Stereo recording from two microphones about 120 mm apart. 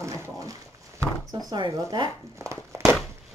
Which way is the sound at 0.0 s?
25° right (ahead or behind).